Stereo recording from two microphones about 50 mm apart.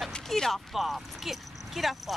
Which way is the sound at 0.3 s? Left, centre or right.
Centre.